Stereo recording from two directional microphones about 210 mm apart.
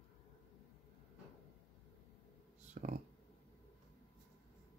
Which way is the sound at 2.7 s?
35° right (ahead or behind).